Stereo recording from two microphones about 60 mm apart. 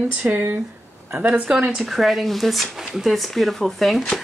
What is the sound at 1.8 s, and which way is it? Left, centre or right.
A woman's voice, centre.